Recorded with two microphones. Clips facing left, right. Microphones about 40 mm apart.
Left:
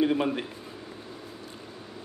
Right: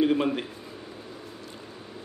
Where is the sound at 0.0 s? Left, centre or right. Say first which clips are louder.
Right 1 dB; centre.